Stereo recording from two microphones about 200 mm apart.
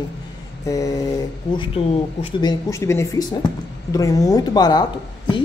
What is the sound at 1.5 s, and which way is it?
Speech, 25° left (ahead or behind).